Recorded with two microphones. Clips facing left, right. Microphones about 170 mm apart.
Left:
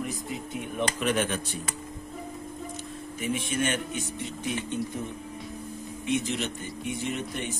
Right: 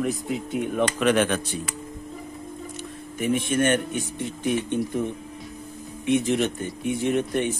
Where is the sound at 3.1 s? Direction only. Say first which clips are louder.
Right 7 dB; 55° right (ahead or behind).